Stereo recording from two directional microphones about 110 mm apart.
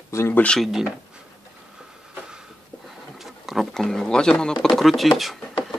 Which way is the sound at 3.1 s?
Centre (ahead or behind).